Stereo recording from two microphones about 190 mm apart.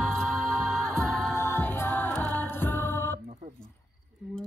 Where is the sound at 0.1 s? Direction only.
5° left (ahead or behind).